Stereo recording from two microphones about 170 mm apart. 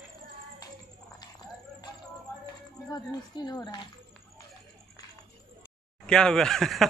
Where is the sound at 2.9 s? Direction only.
25° left (ahead or behind).